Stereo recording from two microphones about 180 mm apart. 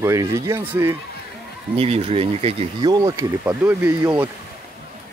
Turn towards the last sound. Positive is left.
turn(degrees=-15)  # may be behind; listen again after turning